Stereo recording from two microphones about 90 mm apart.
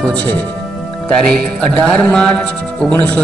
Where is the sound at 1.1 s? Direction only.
10° left (ahead or behind).